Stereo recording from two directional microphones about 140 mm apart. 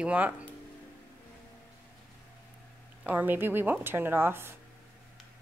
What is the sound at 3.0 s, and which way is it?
Speech, 15° right (ahead or behind).